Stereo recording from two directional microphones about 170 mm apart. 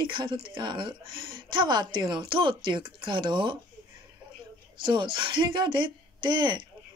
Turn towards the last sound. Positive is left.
turn(degrees=-25)  # may be behind; listen again after turning